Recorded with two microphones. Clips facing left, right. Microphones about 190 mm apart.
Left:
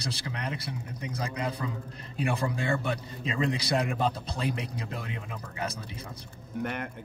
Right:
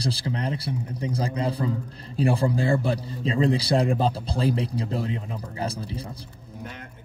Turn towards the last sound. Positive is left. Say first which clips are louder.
# right 5 dB
turn(degrees=-30)  # may be behind; listen again after turning